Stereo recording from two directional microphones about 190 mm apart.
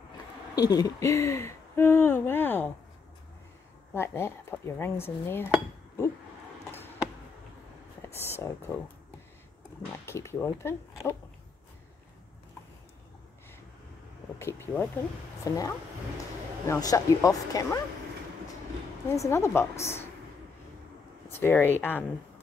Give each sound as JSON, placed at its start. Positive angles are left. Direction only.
{"t": 0.6, "sound": "speech", "side_deg": 20}
{"t": 3.9, "sound": "speech", "side_deg": 15}
{"t": 8.0, "sound": "speech", "side_deg": 10}
{"t": 9.9, "sound": "speech", "side_deg": 15}
{"t": 14.4, "sound": "speech", "side_deg": 10}
{"t": 19.1, "sound": "speech", "side_deg": 15}
{"t": 21.3, "sound": "speech", "side_deg": 10}